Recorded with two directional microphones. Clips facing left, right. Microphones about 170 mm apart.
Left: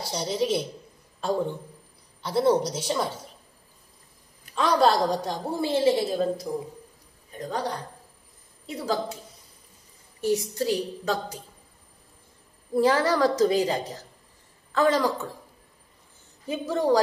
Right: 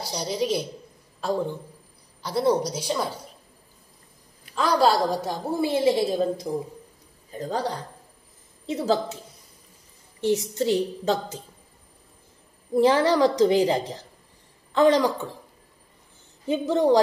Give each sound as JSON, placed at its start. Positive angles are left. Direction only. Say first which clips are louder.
{"t": 0.1, "sound": "a woman's voice", "louder": "even", "side_deg": 0}
{"t": 4.6, "sound": "a woman's voice", "louder": "even", "side_deg": -5}
{"t": 7.3, "sound": "a man's voice", "louder": "right 2 dB", "side_deg": -30}
{"t": 10.5, "sound": "a woman's voice", "louder": "right 3 dB", "side_deg": -25}
{"t": 12.7, "sound": "a woman's voice", "louder": "right 3 dB", "side_deg": -20}
{"t": 16.4, "sound": "a woman's voice", "louder": "right 4 dB", "side_deg": -20}